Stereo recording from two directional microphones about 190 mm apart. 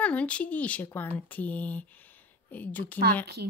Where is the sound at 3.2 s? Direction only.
60° right (ahead or behind).